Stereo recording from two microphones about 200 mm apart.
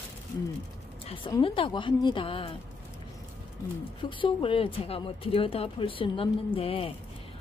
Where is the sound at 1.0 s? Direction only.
25° left (ahead or behind).